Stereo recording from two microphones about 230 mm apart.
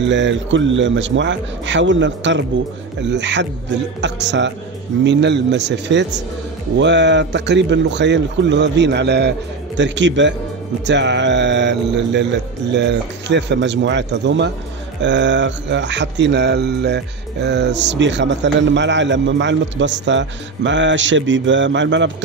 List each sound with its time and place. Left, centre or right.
0.0 s speech: right